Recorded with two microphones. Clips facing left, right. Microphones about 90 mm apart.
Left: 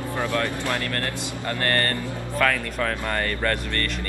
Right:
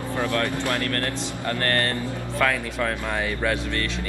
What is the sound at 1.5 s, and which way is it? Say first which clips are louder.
Speech: even; centre (ahead or behind).